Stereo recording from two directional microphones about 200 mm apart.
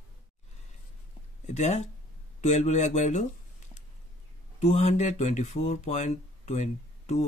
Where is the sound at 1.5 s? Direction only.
35° left (ahead or behind).